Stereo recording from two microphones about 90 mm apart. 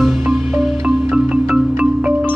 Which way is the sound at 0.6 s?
5° right (ahead or behind).